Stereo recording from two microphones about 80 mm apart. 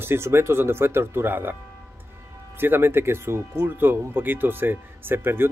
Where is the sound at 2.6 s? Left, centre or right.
Right.